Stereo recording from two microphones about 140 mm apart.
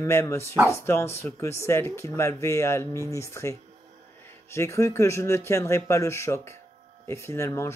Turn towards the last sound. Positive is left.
turn(degrees=20)  # may be behind; listen again after turning